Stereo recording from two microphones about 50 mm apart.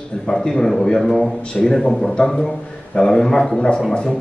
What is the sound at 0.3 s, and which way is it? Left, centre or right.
A man's voice, centre.